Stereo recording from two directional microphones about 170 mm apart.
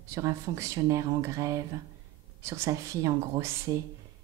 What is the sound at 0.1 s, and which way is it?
A woman's voice, 20° right (ahead or behind).